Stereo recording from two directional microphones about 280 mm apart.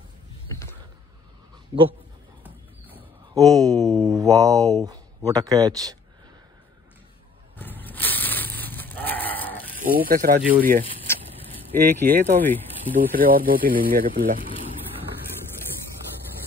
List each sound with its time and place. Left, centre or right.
1.7 s speech: centre
2.9 s a sound: centre
3.6 s speech: centre
7.5 s sheep: centre
9.9 s speech: right
11.7 s speech: centre
12.9 s speech: right